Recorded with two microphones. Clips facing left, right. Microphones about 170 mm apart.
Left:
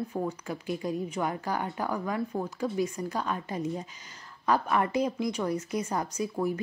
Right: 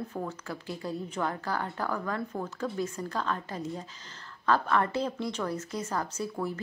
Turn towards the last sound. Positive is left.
turn(degrees=15)  # may be behind; listen again after turning